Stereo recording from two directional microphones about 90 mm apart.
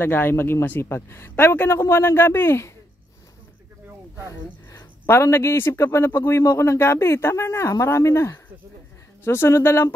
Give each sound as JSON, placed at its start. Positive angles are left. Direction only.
{"t": 0.0, "sound": "a man's voice", "side_deg": 25}
{"t": 4.3, "sound": "a man's voice", "side_deg": 30}